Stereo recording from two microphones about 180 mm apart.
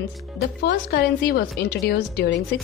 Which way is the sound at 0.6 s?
60° left (ahead or behind).